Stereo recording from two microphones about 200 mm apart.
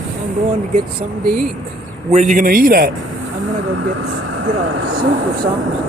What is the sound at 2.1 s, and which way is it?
Speech, 40° right (ahead or behind).